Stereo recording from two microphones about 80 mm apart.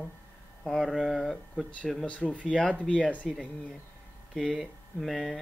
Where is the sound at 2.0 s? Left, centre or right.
Centre.